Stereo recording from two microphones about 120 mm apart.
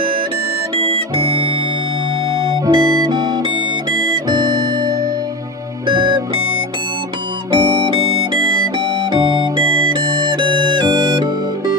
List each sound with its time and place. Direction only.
1.1 s music: 50° right (ahead or behind)
2.6 s music: 35° right (ahead or behind)